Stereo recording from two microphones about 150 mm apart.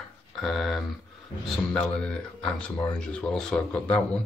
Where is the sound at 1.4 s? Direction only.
5° left (ahead or behind).